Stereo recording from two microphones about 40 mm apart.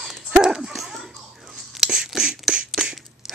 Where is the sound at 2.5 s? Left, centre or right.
Centre.